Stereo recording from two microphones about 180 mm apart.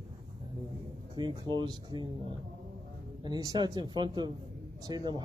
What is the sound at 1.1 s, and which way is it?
Speech, 25° right (ahead or behind).